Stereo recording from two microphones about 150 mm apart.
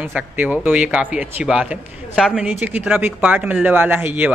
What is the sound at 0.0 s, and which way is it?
A man's voice, 10° right (ahead or behind).